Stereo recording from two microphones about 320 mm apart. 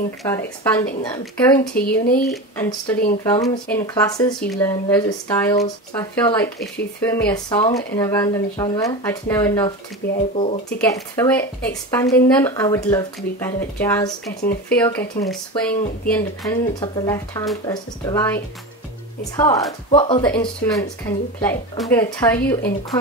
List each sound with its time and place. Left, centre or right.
0.2 s speech: centre
1.8 s speech: left
2.1 s speech: centre
10.3 s speech: left
11.1 s speech: centre